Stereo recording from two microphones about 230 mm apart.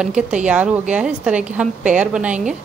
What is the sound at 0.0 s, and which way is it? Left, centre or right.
A woman's voice, centre.